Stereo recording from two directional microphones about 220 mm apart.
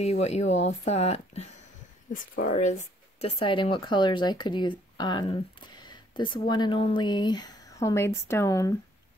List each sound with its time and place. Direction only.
0.0 s speech: 30° left (ahead or behind); by 8.7 s 15° left (ahead or behind)